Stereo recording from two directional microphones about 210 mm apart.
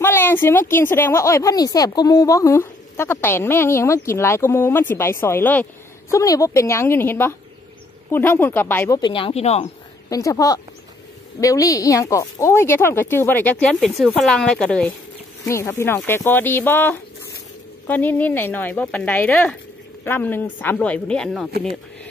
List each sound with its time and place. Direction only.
0.0 s a woman's voice: 10° left (ahead or behind)
9.0 s speech: 25° left (ahead or behind)
10.0 s a woman's voice: 15° left (ahead or behind)
15.4 s a woman's voice: 15° left (ahead or behind)